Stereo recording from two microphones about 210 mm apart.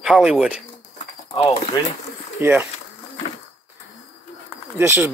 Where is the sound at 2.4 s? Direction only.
10° right (ahead or behind).